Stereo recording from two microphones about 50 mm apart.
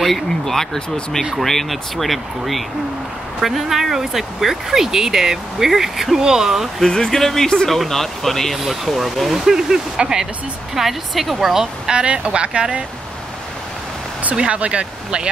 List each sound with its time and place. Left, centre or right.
0.0 s speech: centre
0.7 s speech: centre
1.4 s speech: centre
6.8 s speech: centre
11.5 s speech: centre
14.3 s speech: right